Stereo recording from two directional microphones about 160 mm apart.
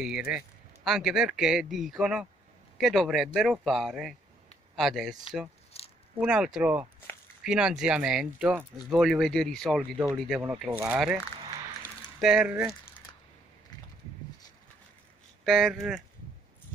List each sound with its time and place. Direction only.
0.0 s speech: 5° right (ahead or behind)
5.7 s a sound: 40° left (ahead or behind)
6.2 s speech: 5° right (ahead or behind)
15.4 s speech: centre (ahead or behind)